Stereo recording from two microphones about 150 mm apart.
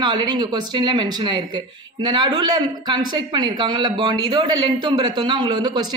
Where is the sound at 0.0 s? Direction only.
30° right (ahead or behind).